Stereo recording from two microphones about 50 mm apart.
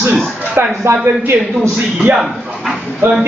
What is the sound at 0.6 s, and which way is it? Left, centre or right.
Speech, right.